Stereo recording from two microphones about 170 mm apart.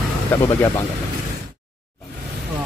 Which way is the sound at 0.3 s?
15° left (ahead or behind).